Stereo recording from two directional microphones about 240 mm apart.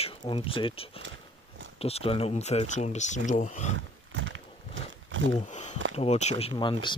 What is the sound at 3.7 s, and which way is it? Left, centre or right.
Wild animals, right.